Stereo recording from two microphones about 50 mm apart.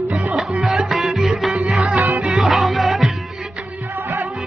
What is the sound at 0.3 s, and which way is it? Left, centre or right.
Music, centre.